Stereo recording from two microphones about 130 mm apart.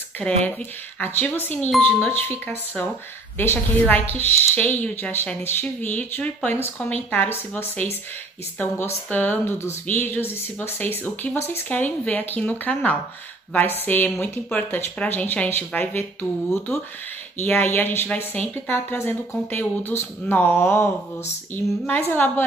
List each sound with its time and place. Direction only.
0.2 s speech: 10° left (ahead or behind)